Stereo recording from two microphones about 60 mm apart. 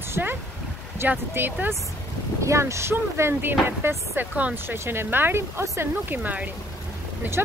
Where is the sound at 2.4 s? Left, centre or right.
Right.